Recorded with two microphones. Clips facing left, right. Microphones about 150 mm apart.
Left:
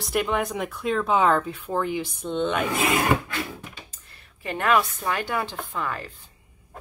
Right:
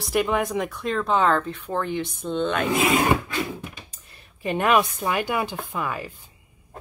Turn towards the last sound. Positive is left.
turn(degrees=-10)  # may be behind; listen again after turning